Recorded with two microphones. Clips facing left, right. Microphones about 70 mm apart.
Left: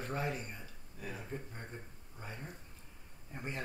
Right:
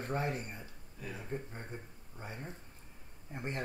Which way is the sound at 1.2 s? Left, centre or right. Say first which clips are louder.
Right 3 dB; centre.